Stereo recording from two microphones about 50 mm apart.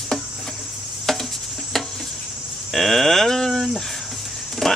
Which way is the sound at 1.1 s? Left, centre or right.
Centre.